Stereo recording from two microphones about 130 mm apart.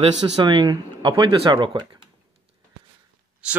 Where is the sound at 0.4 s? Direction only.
35° right (ahead or behind).